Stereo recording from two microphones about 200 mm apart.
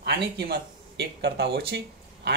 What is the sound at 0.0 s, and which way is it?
Speech, 55° right (ahead or behind).